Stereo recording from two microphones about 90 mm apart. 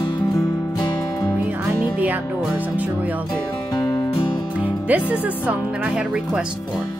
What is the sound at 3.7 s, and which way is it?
Music, 45° left (ahead or behind).